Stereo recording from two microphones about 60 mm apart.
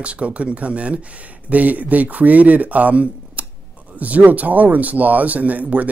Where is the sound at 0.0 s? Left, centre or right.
Right.